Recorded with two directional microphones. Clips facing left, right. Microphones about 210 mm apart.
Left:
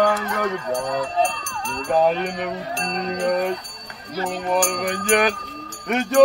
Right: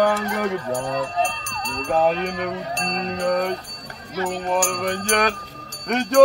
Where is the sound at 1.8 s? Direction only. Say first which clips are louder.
Left 1 dB; centre (ahead or behind).